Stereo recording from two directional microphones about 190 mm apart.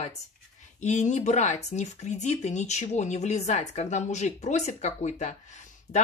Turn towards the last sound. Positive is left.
turn(degrees=40)  # may be behind; listen again after turning